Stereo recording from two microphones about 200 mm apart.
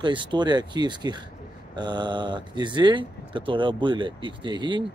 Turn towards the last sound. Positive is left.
turn(degrees=-25)  # may be behind; listen again after turning